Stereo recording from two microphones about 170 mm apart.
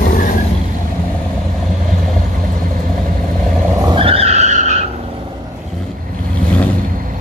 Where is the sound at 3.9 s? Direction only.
30° right (ahead or behind).